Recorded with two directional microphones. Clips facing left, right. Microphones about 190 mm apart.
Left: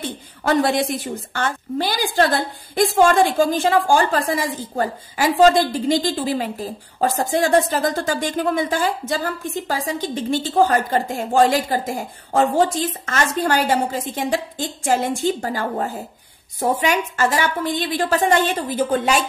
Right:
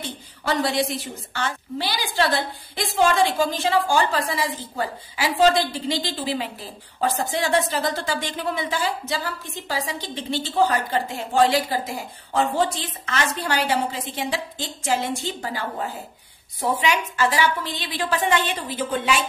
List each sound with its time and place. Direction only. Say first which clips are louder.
0.5 s a woman's voice: left 5 dB; 50° left (ahead or behind)